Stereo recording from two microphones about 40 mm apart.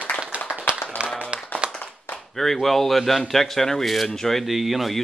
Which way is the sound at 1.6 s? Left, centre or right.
Right.